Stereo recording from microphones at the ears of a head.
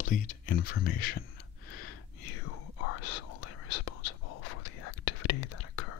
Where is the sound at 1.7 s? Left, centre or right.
Left.